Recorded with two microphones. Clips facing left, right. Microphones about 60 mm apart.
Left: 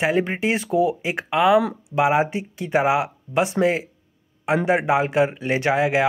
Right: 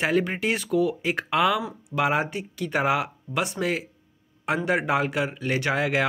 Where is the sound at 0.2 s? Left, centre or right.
Left.